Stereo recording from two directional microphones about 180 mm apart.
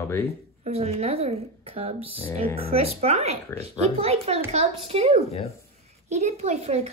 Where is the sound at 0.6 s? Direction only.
35° right (ahead or behind).